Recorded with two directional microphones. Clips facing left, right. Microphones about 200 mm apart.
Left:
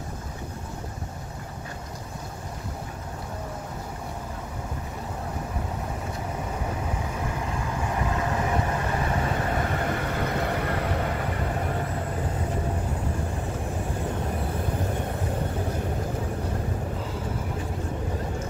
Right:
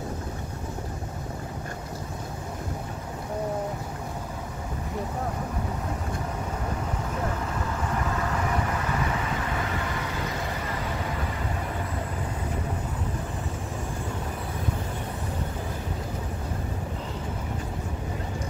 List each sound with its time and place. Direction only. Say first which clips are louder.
9.8 s vehicle: left 4 dB; 55° left (ahead or behind)